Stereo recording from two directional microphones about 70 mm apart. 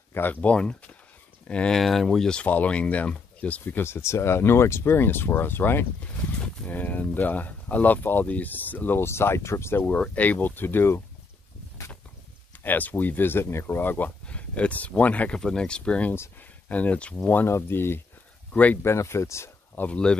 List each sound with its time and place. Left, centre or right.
0.1 s speech: left
1.8 s speech: centre
2.4 s speech: left
5.9 s speech: centre; by 9.9 s left
9.9 s speech: centre
12.6 s speech: left
17.5 s speech: left
18.5 s speech: left
18.8 s speech: left
19.8 s speech: centre